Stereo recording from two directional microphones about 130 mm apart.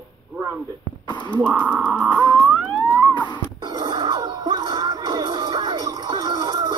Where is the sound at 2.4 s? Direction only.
10° right (ahead or behind).